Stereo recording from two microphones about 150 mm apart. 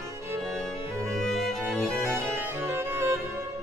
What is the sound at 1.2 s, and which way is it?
Music, centre (ahead or behind).